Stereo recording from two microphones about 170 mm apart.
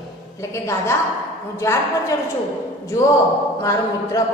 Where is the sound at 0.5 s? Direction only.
15° left (ahead or behind).